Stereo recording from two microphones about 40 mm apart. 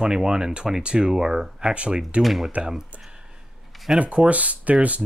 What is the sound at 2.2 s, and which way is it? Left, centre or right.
Speech, centre.